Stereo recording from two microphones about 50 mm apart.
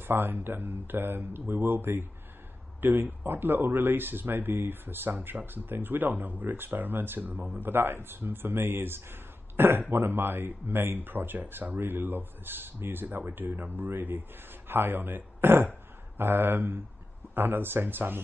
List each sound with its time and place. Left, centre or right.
0.0 s speech: right
7.2 s speech: right
7.5 s speech: right